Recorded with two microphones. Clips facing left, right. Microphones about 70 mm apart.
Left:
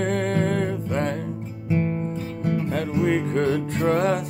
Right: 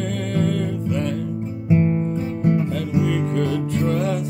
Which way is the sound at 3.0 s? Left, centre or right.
Left.